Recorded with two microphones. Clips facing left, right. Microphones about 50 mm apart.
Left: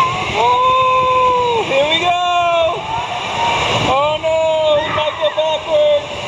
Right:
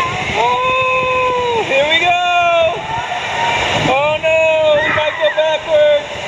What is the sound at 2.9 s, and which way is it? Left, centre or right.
Vehicle, right.